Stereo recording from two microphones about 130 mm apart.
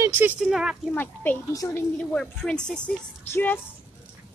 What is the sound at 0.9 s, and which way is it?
Speech, 15° left (ahead or behind).